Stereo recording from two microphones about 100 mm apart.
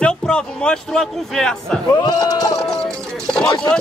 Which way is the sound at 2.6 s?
5° left (ahead or behind).